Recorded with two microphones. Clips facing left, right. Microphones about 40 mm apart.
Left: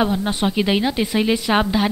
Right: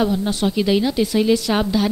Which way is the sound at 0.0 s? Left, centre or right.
Left.